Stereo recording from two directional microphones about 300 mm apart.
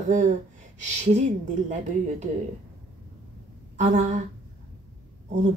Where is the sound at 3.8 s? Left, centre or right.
Right.